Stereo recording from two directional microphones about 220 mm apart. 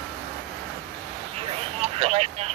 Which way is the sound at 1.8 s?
30° right (ahead or behind).